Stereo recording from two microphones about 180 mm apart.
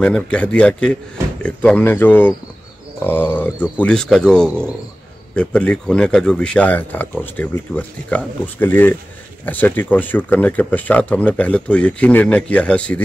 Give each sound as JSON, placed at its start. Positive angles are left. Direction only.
{"t": 0.0, "sound": "speech", "side_deg": 5}